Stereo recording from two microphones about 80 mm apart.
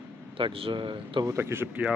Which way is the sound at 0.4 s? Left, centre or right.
Right.